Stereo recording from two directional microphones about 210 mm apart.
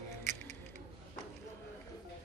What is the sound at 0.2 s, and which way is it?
Music, 35° right (ahead or behind).